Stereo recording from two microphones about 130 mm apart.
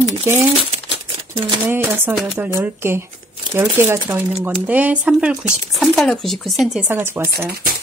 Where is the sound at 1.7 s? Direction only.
15° right (ahead or behind).